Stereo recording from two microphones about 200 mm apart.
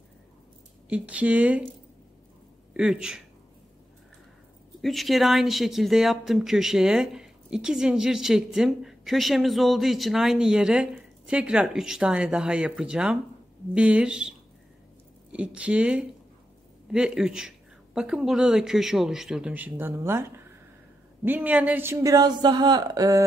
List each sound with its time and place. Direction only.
0.8 s a man's voice: 5° right (ahead or behind)
2.7 s speech: 5° right (ahead or behind)
4.8 s speech: centre (ahead or behind)
15.3 s a man's voice: 5° right (ahead or behind)